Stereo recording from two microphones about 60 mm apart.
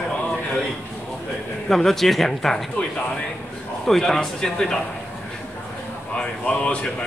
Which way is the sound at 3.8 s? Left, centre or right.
Centre.